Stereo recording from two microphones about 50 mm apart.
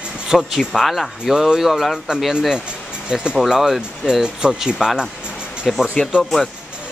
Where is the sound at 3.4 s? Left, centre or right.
Centre.